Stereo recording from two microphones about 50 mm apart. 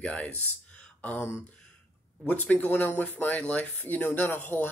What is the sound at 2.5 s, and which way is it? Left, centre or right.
Speech, left.